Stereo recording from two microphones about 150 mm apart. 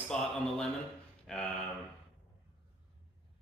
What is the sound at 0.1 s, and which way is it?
Speech, 5° left (ahead or behind).